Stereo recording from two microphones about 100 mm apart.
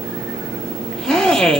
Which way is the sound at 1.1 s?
5° left (ahead or behind).